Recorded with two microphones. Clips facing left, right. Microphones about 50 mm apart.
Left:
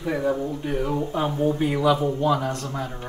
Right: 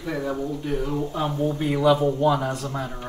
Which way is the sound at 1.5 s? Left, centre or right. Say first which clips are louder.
Right 2 dB; centre.